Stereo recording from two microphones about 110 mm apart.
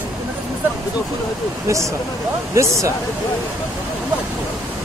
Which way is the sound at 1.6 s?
30° right (ahead or behind).